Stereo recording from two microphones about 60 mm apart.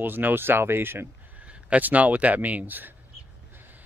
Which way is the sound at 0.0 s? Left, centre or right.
Right.